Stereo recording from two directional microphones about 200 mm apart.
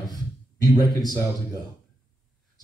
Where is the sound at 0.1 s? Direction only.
20° left (ahead or behind).